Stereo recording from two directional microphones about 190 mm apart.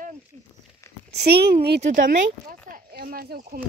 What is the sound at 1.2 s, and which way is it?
Speech, 55° right (ahead or behind).